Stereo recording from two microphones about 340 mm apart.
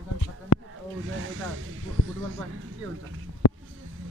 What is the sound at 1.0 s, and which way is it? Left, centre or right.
A man's voice, right.